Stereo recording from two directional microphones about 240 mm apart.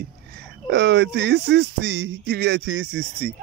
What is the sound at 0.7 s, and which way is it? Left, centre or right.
Speech, right.